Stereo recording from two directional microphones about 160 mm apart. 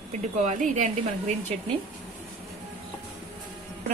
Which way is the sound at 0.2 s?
50° right (ahead or behind).